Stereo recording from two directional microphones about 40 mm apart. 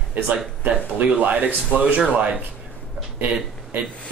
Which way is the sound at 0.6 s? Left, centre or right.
Right.